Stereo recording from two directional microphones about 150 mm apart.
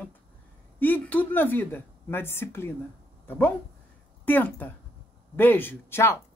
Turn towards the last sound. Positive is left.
turn(degrees=15)  # may be behind; listen again after turning